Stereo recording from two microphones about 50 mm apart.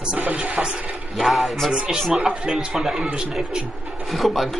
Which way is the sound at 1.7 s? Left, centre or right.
Centre.